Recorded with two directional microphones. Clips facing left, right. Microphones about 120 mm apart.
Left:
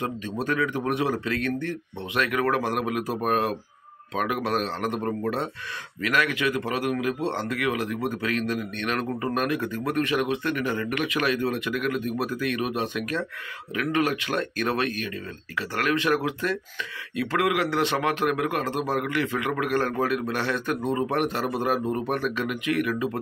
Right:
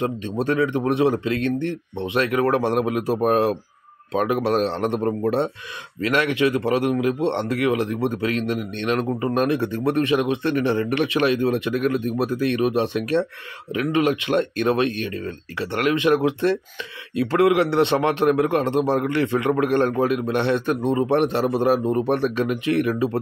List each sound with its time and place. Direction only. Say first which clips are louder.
0.0 s a man's voice: right 5 dB; 25° right (ahead or behind)